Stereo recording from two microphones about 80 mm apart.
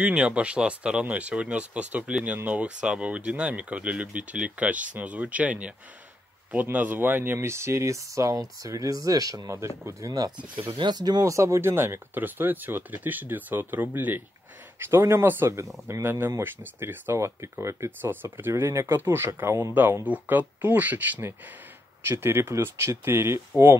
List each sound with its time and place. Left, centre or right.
0.0 s speech: centre
7.3 s speech: right
11.2 s speech: right
18.1 s speech: right
18.5 s speech: right
19.7 s speech: right